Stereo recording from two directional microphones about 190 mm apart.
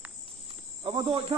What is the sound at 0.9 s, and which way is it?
Speech, 25° right (ahead or behind).